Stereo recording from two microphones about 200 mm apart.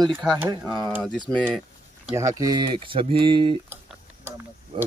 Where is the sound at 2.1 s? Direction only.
15° right (ahead or behind).